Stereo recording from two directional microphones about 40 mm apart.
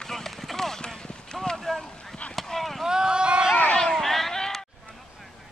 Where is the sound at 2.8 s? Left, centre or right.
Centre.